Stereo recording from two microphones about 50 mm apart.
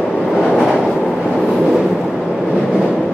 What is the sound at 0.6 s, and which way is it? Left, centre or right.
Train, centre.